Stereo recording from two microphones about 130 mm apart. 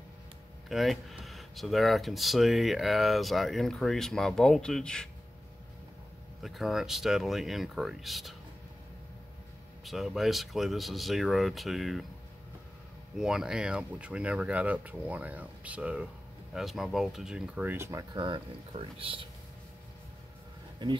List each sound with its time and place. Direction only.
0.7 s speech: centre (ahead or behind)
6.4 s speech: centre (ahead or behind)
9.8 s speech: centre (ahead or behind)
13.2 s speech: 5° right (ahead or behind); by 18.0 s 20° right (ahead or behind)
18.1 s speech: 40° right (ahead or behind)
20.8 s speech: 35° right (ahead or behind)